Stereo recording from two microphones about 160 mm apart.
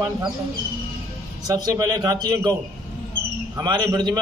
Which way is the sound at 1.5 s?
25° right (ahead or behind).